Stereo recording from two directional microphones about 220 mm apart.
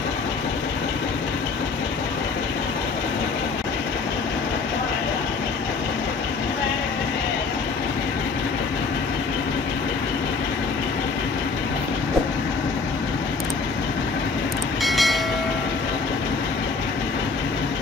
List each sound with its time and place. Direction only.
14.8 s train: centre (ahead or behind)